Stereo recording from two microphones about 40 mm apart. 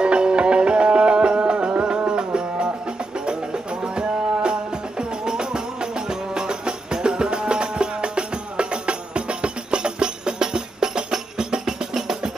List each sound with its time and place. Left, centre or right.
0.0 s music: right
3.9 s music: right